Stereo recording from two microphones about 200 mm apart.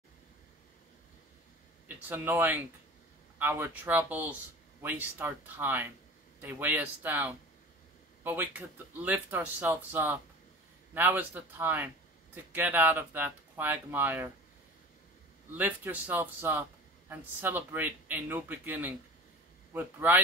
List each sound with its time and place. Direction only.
2.0 s speech: 10° right (ahead or behind)
15.5 s speech: 10° right (ahead or behind)